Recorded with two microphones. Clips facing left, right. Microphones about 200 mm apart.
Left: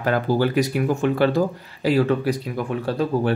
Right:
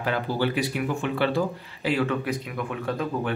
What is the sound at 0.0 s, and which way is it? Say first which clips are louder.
Speech: left 5 dB; 45° left (ahead or behind).